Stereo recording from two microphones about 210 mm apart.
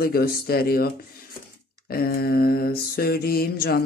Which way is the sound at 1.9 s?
45° left (ahead or behind).